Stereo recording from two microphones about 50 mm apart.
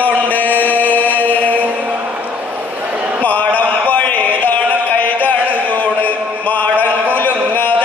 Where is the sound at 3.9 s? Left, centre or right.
Left.